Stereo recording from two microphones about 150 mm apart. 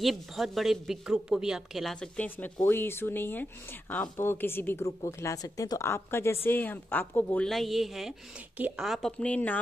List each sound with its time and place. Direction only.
0.0 s a woman's voice: centre (ahead or behind)